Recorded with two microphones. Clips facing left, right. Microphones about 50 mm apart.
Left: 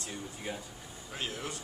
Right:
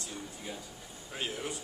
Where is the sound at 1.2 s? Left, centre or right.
Centre.